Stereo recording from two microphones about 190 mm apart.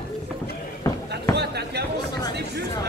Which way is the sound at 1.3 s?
60° right (ahead or behind).